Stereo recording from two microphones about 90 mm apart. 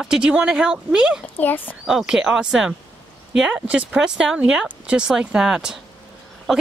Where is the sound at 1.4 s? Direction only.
20° left (ahead or behind).